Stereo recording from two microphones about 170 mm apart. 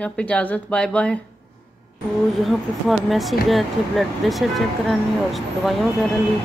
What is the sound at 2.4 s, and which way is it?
A woman's voice, centre (ahead or behind).